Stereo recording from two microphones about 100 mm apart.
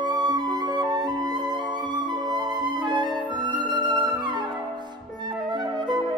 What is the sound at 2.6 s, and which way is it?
Music, 50° right (ahead or behind).